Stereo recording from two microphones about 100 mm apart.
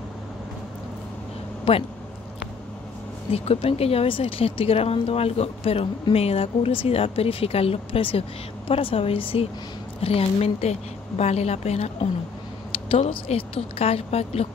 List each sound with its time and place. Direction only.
1.6 s speech: 70° left (ahead or behind)
3.3 s speech: 85° left; by 9.5 s 65° left (ahead or behind)
10.0 s speech: 85° left
12.7 s speech: 65° left (ahead or behind); by 14.5 s 90° left